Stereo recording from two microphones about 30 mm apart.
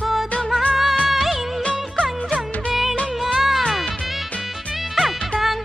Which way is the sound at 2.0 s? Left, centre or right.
Left.